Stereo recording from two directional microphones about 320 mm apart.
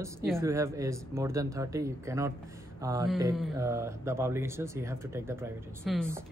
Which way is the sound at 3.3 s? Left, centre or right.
Centre.